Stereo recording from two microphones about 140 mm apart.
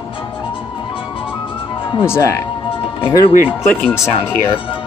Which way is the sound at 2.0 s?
20° left (ahead or behind).